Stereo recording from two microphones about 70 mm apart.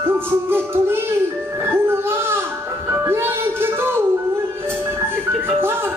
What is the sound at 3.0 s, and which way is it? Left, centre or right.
Music, right.